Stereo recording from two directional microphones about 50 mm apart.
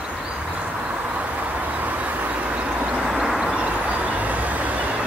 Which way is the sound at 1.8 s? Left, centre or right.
Right.